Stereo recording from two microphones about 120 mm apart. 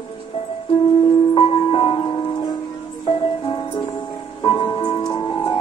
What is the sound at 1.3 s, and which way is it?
Music, 50° left (ahead or behind).